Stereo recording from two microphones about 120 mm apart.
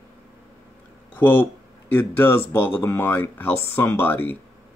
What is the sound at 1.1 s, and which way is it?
Speech, 15° left (ahead or behind).